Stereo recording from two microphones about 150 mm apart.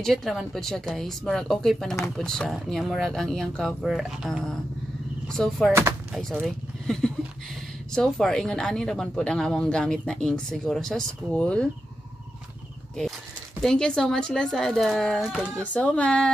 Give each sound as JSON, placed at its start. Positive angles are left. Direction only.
{"t": 0.0, "sound": "speech", "side_deg": 0}
{"t": 5.7, "sound": "speech", "side_deg": -15}
{"t": 6.4, "sound": "speech", "side_deg": 5}
{"t": 13.6, "sound": "speech", "side_deg": 5}